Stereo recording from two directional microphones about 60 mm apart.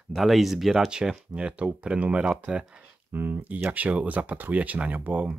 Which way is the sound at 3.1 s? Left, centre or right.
Right.